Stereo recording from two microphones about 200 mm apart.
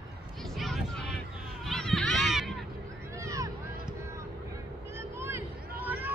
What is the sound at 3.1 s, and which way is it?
Boat, 15° right (ahead or behind).